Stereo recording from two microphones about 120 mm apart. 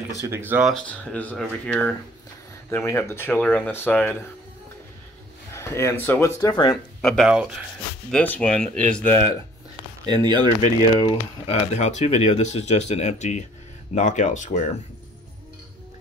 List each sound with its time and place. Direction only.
0.2 s speech: 20° right (ahead or behind)
0.8 s speech: 10° left (ahead or behind)
5.5 s speech: 20° left (ahead or behind)
6.5 s speech: 35° left (ahead or behind)
7.0 s speech: 5° left (ahead or behind)
10.0 s speech: 40° right (ahead or behind)
11.4 s speech: 65° left (ahead or behind)
13.9 s speech: 90° left